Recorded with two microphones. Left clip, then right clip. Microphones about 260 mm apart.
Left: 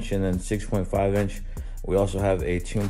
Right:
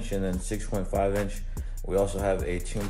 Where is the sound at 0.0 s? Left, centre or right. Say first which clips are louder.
Left 4 dB; left.